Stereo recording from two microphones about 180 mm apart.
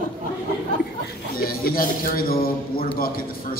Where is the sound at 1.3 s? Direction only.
55° left (ahead or behind).